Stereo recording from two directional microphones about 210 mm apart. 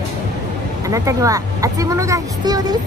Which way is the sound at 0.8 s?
15° right (ahead or behind).